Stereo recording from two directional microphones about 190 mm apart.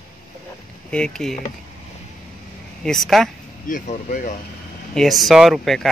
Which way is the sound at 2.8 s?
Centre (ahead or behind).